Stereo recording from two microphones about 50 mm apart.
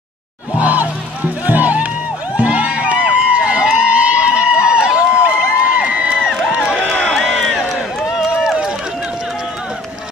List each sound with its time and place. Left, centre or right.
0.6 s music: right
2.3 s a sound: right
5.2 s crowd: right
7.3 s run: centre